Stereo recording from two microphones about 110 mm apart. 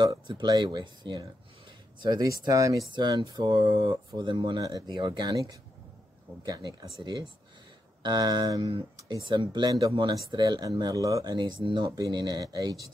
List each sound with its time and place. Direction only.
0.0 s speech: 45° right (ahead or behind)
2.9 s speech: 45° right (ahead or behind)
4.3 s speech: 45° right (ahead or behind)
4.6 s speech: 35° right (ahead or behind)
5.3 s speech: 30° right (ahead or behind)
9.7 s speech: 30° right (ahead or behind)